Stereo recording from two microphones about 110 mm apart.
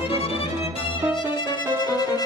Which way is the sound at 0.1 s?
60° left (ahead or behind).